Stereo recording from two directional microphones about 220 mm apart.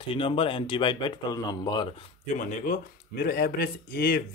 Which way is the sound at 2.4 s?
35° left (ahead or behind).